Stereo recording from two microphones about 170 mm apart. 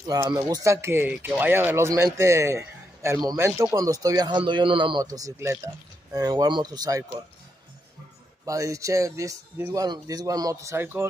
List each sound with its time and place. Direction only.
0.0 s speech: 25° right (ahead or behind)
8.5 s speech: 20° right (ahead or behind)